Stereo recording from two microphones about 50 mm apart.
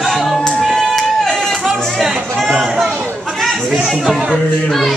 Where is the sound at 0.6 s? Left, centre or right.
Centre.